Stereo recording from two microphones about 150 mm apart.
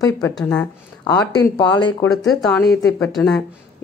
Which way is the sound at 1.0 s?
25° left (ahead or behind).